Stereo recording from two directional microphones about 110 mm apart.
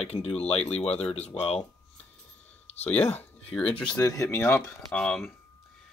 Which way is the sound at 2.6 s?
80° left.